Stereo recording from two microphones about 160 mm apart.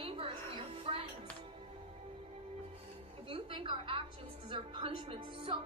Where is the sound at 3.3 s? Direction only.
35° right (ahead or behind).